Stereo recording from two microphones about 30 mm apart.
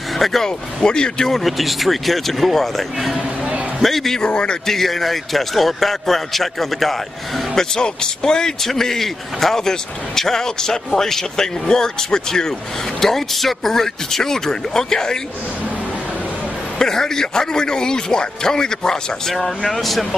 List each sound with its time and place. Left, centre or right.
0.2 s speech: centre
0.8 s a man's voice: left
1.3 s a man's voice: centre
4.2 s a man's voice: left
4.6 s a man's voice: centre
7.5 s a man's voice: left
13.0 s speech: centre
16.7 s a man's voice: centre
19.3 s speech: centre